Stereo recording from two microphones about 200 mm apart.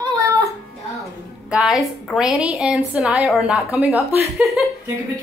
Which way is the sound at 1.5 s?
5° right (ahead or behind).